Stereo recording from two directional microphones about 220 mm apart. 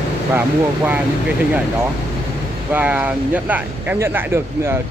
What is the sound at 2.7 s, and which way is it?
Speech, 5° right (ahead or behind).